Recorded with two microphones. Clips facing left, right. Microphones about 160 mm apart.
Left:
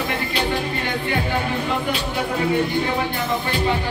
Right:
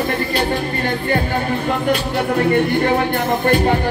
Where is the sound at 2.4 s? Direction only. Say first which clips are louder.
Right 4 dB; 55° right (ahead or behind).